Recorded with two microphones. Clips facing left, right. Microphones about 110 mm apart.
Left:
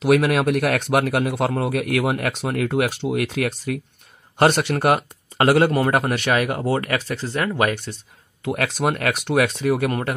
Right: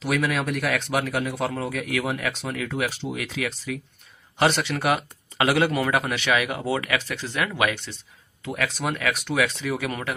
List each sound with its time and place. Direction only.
0.0 s a man's voice: 60° left (ahead or behind); by 7.9 s 45° left (ahead or behind)
8.5 s speech: 55° left (ahead or behind)